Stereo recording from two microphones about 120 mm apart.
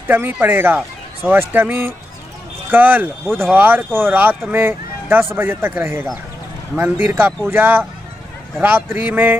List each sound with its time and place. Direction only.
0.1 s speech: 15° right (ahead or behind)